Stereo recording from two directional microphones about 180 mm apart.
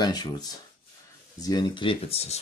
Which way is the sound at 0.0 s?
20° left (ahead or behind).